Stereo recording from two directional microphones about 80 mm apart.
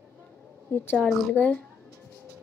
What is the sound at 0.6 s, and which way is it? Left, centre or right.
Speech, left.